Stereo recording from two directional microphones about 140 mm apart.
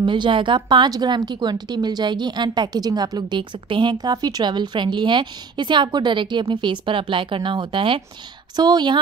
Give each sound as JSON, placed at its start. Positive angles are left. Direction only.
{"t": 0.0, "sound": "a woman's voice", "side_deg": -35}